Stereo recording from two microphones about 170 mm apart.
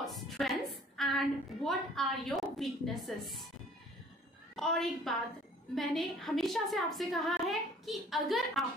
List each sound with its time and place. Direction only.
0.0 s a woman's voice: centre (ahead or behind)
4.6 s a woman's voice: centre (ahead or behind)